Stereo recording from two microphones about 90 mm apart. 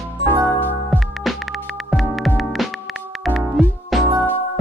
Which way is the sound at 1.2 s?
Centre (ahead or behind).